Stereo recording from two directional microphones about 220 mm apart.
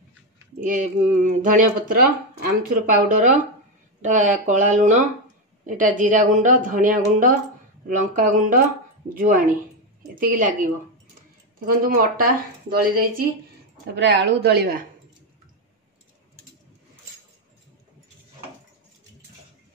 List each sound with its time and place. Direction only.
0.6 s speech: 35° right (ahead or behind)
13.9 s a woman's voice: 50° right (ahead or behind)